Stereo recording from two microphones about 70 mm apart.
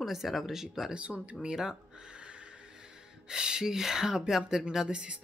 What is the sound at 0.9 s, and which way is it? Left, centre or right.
Speech, centre.